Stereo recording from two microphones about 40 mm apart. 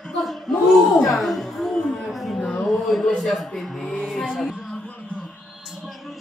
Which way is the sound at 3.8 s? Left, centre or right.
Centre.